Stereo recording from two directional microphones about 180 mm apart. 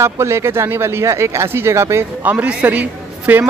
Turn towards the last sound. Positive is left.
turn(degrees=-10)  # may be behind; listen again after turning